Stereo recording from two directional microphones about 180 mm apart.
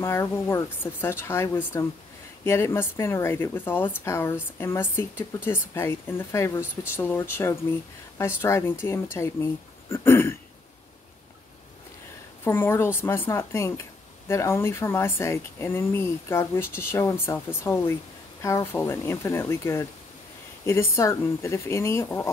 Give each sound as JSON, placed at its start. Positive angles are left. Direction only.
{"t": 0.0, "sound": "speech", "side_deg": 15}
{"t": 12.4, "sound": "speech", "side_deg": 10}